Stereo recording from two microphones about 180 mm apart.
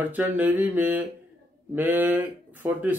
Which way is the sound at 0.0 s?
10° right (ahead or behind).